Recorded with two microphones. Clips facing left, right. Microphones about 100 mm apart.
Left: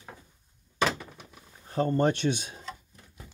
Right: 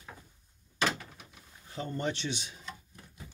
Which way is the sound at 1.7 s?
50° left (ahead or behind).